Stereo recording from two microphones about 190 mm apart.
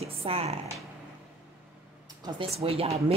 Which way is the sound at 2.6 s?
30° right (ahead or behind).